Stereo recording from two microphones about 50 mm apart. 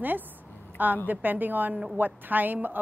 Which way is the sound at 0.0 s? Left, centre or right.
Right.